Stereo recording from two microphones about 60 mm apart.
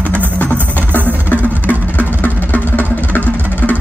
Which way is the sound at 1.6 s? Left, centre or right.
Left.